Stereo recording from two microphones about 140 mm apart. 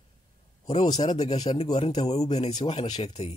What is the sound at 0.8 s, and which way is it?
Speech, 30° left (ahead or behind).